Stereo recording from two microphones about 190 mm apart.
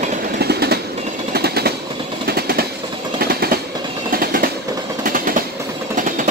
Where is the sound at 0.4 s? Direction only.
60° right (ahead or behind).